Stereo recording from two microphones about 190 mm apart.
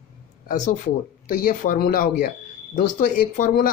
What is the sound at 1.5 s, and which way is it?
Speech, 45° left (ahead or behind).